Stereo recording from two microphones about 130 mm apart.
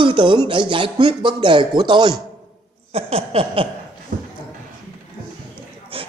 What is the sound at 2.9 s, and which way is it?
Speech, 45° right (ahead or behind).